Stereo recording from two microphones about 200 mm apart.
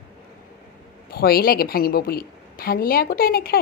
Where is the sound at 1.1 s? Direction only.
50° left (ahead or behind).